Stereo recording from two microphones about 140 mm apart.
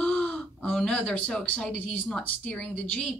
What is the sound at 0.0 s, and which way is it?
Speech, 10° left (ahead or behind).